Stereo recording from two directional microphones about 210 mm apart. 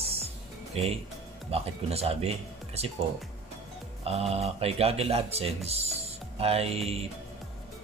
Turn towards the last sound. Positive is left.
turn(degrees=-30)  # may be behind; listen again after turning